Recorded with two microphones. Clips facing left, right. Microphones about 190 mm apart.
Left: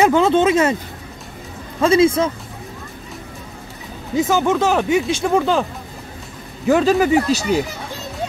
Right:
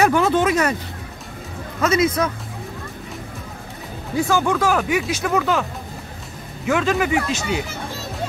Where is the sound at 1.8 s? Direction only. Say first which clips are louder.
Left 5 dB; 30° left (ahead or behind).